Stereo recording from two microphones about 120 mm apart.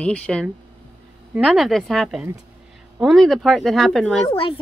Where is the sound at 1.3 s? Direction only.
5° right (ahead or behind).